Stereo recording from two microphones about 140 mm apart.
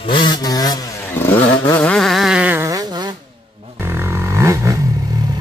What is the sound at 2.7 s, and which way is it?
Fart, 25° right (ahead or behind).